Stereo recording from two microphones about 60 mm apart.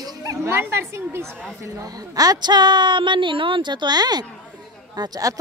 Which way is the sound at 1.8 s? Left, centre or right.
Right.